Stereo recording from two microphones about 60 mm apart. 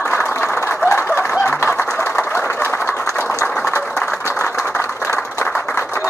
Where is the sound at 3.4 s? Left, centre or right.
Left.